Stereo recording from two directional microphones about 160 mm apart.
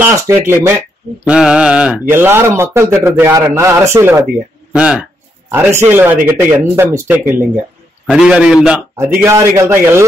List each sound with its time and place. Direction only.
0.0 s a man's voice: 15° right (ahead or behind)
8.9 s speech: 15° right (ahead or behind)